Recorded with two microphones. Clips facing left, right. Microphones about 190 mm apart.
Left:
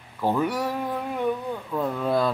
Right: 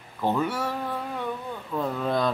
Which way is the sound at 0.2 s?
10° left (ahead or behind).